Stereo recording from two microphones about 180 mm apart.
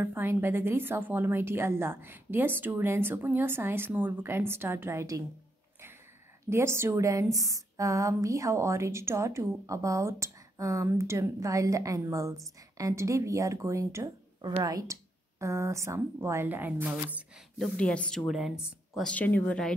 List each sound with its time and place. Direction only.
0.0 s a woman's voice: 10° right (ahead or behind)
6.5 s a woman's voice: 15° right (ahead or behind); by 19.7 s 5° left (ahead or behind)